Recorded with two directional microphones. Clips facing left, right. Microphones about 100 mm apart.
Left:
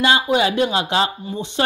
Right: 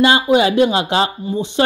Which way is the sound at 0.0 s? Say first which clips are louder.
Right 4 dB; 25° right (ahead or behind).